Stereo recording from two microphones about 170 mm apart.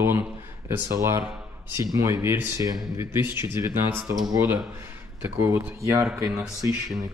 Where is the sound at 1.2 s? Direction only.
5° right (ahead or behind).